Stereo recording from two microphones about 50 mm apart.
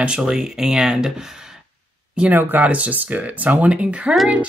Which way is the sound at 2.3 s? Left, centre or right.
Right.